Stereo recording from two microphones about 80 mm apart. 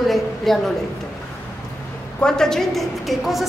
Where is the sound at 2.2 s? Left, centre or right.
Centre.